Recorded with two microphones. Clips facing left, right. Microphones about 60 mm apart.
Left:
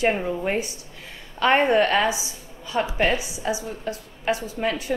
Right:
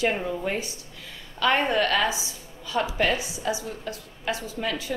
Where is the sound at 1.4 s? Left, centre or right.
Left.